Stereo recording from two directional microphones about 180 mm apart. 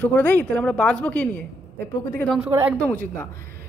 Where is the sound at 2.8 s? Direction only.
10° left (ahead or behind).